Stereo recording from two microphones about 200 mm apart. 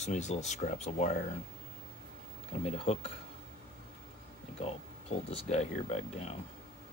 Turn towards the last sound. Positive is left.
turn(degrees=30)  # may be behind; listen again after turning